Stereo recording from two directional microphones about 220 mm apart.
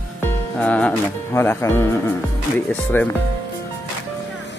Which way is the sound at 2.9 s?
10° left (ahead or behind).